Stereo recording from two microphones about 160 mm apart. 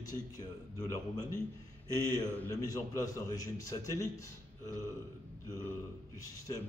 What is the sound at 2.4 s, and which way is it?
A man's voice, 20° left (ahead or behind).